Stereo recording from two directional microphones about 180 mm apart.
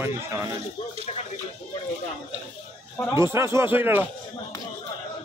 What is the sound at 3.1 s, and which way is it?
Speech, 15° right (ahead or behind).